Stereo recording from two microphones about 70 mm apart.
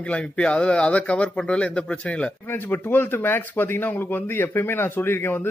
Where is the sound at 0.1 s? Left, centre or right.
Centre.